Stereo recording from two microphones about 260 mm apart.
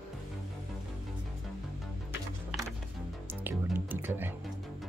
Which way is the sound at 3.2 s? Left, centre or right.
Centre.